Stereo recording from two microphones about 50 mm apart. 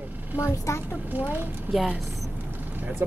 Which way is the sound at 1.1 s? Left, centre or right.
Right.